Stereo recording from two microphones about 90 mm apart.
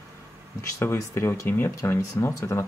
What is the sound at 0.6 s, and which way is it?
Speech, 30° left (ahead or behind).